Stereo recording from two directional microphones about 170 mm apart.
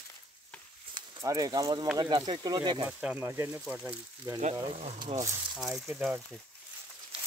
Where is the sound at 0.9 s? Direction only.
20° right (ahead or behind).